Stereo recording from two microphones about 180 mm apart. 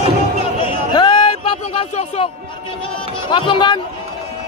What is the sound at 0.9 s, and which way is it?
Music, 25° left (ahead or behind).